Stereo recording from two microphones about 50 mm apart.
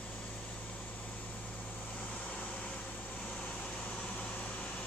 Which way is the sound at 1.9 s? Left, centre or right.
Left.